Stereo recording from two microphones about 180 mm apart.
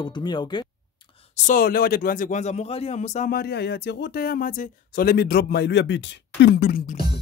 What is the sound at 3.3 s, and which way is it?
Speech, 70° left (ahead or behind).